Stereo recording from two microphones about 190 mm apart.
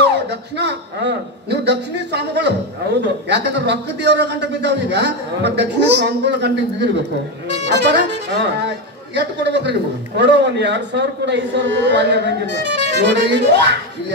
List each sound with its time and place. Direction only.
0.0 s a man's voice: 65° right (ahead or behind)